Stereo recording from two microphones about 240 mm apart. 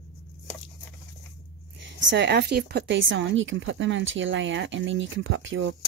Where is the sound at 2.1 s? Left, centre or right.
Right.